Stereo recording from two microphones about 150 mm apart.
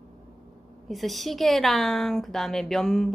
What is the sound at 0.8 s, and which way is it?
A woman's voice, centre (ahead or behind).